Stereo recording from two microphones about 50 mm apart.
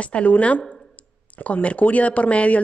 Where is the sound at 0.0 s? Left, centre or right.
Left.